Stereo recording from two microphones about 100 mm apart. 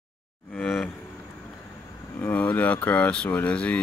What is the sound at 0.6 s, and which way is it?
Cattle, centre (ahead or behind).